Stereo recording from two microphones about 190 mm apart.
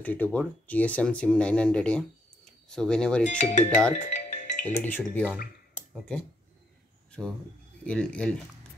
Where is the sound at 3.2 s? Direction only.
40° left (ahead or behind).